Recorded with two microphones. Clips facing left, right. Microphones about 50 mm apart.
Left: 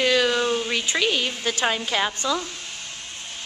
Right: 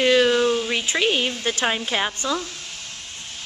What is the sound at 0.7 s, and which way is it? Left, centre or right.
Speech, centre.